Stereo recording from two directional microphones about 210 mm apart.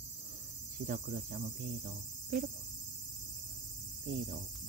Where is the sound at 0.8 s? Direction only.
40° right (ahead or behind).